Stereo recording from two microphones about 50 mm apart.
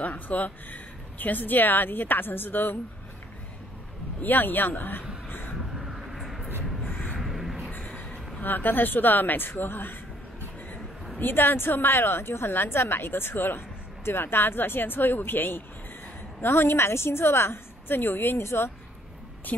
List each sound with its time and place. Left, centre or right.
0.0 s speech: left
4.2 s speech: left
5.8 s vehicle: centre
6.8 s crow: left
7.2 s a sound: centre
7.7 s a sound: left
8.4 s speech: left
11.1 s a woman's voice: left